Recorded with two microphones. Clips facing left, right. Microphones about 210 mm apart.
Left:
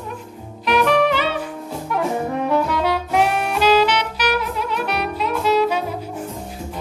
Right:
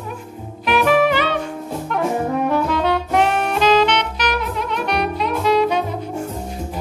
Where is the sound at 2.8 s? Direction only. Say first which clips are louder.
Right 1 dB; 5° left (ahead or behind).